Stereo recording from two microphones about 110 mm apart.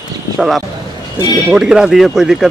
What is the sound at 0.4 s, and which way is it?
Speech, centre (ahead or behind).